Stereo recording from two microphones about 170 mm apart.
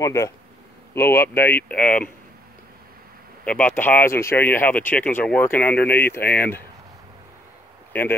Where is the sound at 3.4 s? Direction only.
10° left (ahead or behind).